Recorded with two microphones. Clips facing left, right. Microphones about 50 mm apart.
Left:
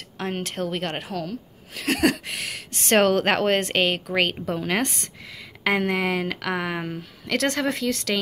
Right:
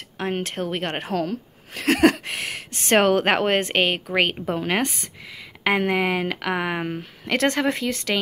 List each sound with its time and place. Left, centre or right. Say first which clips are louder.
0.2 s a woman's voice: right 2 dB; right